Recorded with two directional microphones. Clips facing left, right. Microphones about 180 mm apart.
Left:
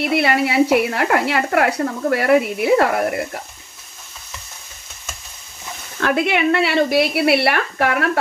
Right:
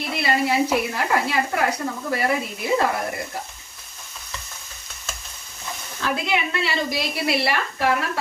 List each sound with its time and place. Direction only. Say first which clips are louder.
0.0 s speech: left 5 dB; 65° left (ahead or behind)
5.9 s speech: left 6 dB; 65° left (ahead or behind)